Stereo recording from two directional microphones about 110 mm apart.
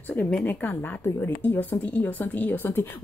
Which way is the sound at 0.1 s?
10° left (ahead or behind).